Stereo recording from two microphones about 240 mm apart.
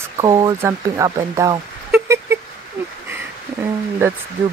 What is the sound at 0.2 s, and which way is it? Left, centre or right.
Speech, centre.